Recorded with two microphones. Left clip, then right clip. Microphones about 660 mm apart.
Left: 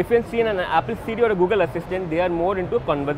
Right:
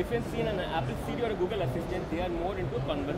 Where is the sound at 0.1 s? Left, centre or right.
Left.